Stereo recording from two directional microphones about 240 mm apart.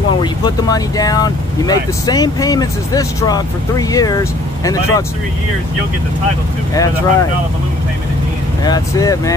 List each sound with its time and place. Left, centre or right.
0.2 s speech: centre
6.7 s speech: centre
8.6 s speech: centre